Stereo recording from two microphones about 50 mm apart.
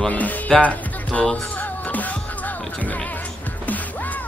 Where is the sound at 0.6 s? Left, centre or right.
Left.